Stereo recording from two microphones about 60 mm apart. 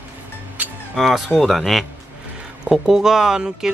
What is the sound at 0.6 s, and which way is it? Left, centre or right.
Music, right.